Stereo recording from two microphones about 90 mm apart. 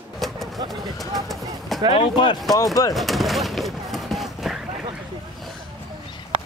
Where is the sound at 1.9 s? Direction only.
75° left (ahead or behind); by 2.4 s 60° left (ahead or behind).